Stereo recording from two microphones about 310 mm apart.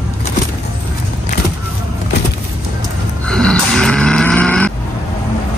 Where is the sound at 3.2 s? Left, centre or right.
Centre.